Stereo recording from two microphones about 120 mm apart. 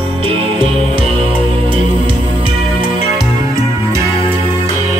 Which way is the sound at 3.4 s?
25° right (ahead or behind).